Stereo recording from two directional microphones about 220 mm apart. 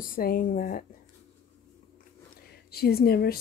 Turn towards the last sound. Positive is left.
turn(degrees=45)  # may be behind; listen again after turning